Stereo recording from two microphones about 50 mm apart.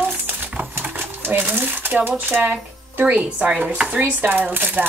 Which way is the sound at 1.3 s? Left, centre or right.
Right.